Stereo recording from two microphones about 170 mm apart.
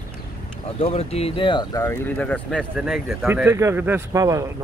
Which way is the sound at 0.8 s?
40° left (ahead or behind).